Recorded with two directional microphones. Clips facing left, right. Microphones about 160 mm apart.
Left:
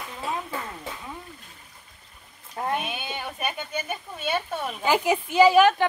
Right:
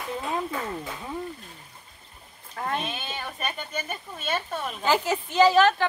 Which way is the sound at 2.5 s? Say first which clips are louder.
Left 2 dB; 15° left (ahead or behind).